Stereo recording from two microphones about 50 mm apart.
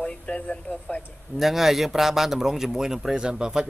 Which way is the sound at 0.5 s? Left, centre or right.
Left.